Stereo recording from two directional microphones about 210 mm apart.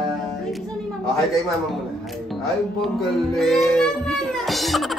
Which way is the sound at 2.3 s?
Centre (ahead or behind).